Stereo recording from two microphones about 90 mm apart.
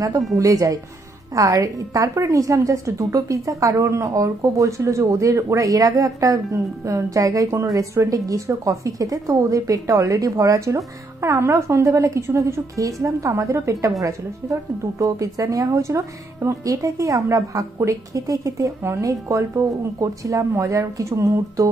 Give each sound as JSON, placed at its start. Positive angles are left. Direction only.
{"t": 0.4, "sound": "a woman's voice", "side_deg": -40}